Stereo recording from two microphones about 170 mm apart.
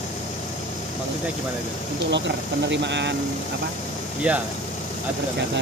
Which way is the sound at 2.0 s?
90° right.